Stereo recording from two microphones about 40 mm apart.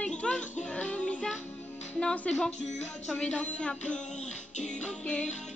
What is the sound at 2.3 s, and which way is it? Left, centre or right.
Speech, left.